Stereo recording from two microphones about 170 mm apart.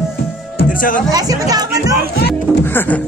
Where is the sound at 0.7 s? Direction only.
55° left (ahead or behind).